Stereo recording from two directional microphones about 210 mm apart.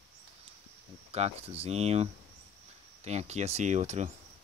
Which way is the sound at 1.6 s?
30° right (ahead or behind).